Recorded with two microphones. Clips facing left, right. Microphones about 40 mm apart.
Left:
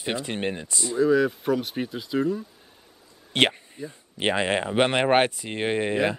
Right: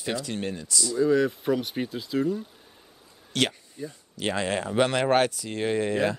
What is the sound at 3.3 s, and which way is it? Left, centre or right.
Speech, left.